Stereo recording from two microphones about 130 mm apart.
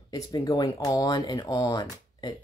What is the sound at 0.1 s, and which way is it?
Speech, 30° left (ahead or behind).